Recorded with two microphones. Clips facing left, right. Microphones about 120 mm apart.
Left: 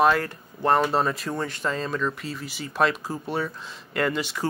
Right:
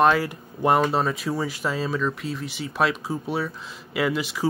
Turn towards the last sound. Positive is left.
turn(degrees=0)  # may be behind; listen again after turning